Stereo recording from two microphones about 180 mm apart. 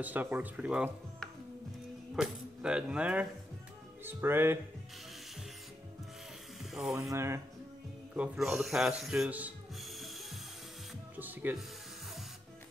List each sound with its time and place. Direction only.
0.0 s speech: 10° right (ahead or behind)
6.6 s speech: centre (ahead or behind)
7.1 s speech: 15° right (ahead or behind)
8.1 s rub: 5° right (ahead or behind)
11.1 s music: 10° right (ahead or behind)